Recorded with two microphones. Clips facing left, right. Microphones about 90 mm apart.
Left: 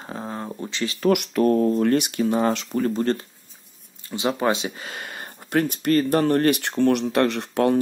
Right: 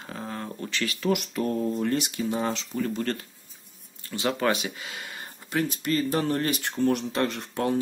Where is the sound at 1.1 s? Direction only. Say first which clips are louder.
Left 10 dB; 65° left (ahead or behind).